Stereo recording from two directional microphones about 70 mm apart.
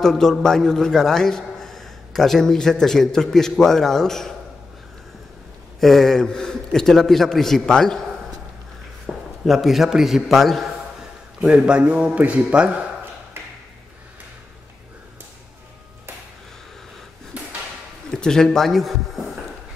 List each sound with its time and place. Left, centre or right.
0.0 s a man's voice: centre
5.8 s a man's voice: centre
11.4 s speech: centre
18.1 s a man's voice: centre